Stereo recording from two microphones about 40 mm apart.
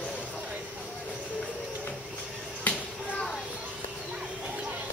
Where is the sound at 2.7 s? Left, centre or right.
Left.